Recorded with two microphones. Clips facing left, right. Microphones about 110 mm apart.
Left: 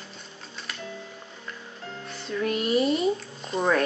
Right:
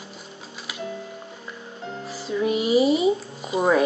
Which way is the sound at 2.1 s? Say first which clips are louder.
Right 4 dB; 5° right (ahead or behind).